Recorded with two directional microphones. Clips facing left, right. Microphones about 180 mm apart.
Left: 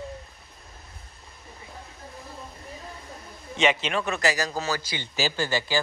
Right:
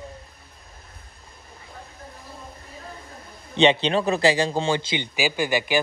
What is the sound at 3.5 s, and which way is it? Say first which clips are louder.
Speech: right 6 dB; 30° right (ahead or behind).